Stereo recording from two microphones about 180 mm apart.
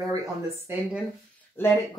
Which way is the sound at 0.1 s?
20° right (ahead or behind).